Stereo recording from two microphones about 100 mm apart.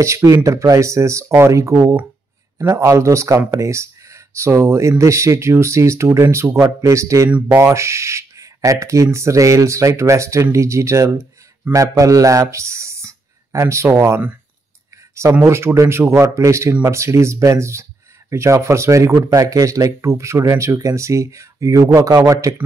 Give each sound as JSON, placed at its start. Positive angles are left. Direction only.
{"t": 0.0, "sound": "speech", "side_deg": -30}
{"t": 15.4, "sound": "speech", "side_deg": -25}